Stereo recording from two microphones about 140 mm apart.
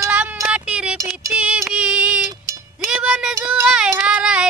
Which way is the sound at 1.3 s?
10° right (ahead or behind).